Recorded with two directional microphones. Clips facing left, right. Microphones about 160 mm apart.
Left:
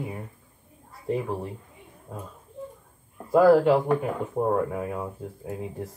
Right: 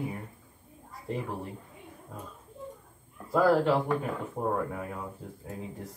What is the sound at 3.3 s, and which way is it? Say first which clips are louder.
Speech: left 6 dB; 15° left (ahead or behind).